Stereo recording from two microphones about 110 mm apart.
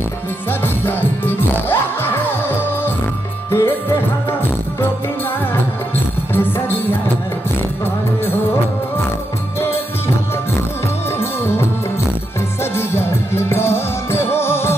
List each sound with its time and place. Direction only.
0.5 s music: 20° left (ahead or behind)
6.3 s music: 20° left (ahead or behind)
9.6 s music: 20° left (ahead or behind)
11.1 s music: 20° left (ahead or behind)
12.7 s music: 20° left (ahead or behind)